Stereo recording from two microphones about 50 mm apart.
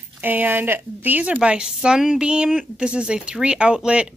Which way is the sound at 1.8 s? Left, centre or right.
Centre.